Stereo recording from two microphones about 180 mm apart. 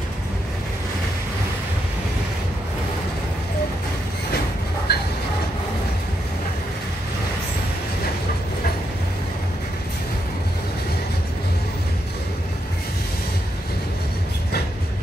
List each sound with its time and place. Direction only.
4.9 s train: 60° left (ahead or behind)